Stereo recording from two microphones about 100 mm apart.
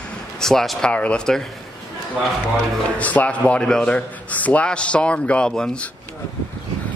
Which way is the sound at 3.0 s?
15° left (ahead or behind).